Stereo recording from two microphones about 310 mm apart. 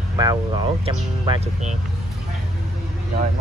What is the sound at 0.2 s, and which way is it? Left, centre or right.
Speech, centre.